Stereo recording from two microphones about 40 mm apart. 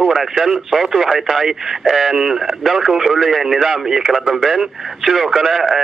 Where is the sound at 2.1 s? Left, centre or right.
Centre.